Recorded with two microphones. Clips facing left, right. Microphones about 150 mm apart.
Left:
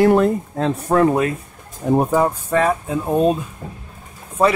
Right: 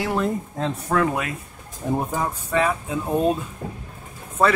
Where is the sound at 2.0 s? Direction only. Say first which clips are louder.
Left 9 dB; 60° left (ahead or behind); by 3.0 s 45° left (ahead or behind).